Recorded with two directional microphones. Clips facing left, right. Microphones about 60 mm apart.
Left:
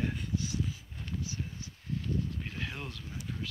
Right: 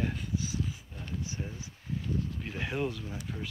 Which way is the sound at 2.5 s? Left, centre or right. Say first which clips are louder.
Right 7 dB; centre.